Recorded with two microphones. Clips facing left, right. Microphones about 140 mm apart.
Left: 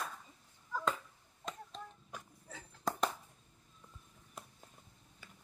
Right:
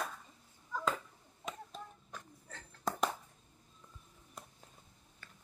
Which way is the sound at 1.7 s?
5° right (ahead or behind).